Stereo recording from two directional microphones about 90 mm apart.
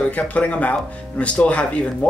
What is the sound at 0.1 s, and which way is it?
A man's voice, 15° left (ahead or behind).